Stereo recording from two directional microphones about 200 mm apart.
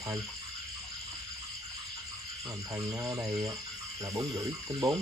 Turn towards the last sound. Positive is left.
turn(degrees=-15)  # may be behind; listen again after turning